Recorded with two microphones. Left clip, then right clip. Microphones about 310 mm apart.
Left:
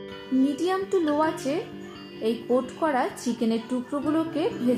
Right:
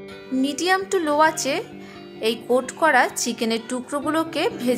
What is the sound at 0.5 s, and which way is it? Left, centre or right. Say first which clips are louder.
A woman's voice: right 4 dB; right.